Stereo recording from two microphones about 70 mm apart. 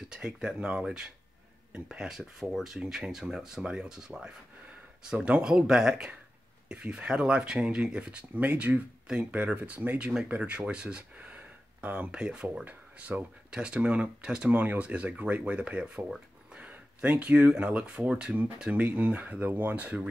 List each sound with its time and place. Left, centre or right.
0.1 s speech: centre